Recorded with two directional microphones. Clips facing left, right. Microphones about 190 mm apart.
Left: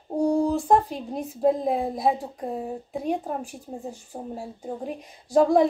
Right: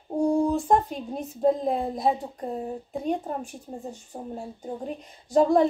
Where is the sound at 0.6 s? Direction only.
10° left (ahead or behind).